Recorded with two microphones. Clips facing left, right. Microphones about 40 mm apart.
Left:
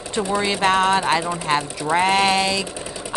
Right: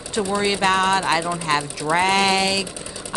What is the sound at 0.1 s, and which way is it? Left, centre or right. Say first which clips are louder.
Speech: even; centre.